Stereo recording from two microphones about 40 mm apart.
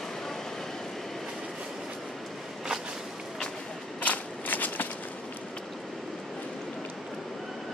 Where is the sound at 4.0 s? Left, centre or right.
Left.